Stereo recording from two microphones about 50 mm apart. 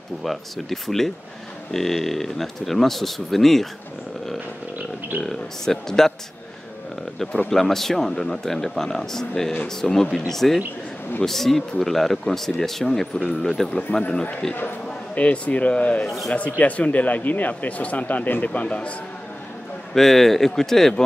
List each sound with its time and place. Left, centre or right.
0.2 s speech: centre
5.2 s speech: centre
7.4 s speech: centre
13.7 s speech: left
14.4 s speech: centre
15.1 s speech: left
16.1 s speech: centre
16.3 s a man's voice: left
19.9 s speech: centre